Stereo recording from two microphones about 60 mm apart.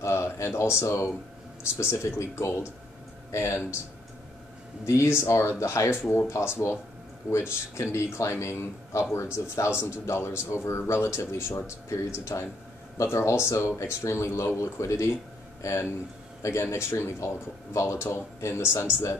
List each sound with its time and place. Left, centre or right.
0.0 s a man's voice: left
4.8 s a man's voice: left
11.9 s a man's voice: left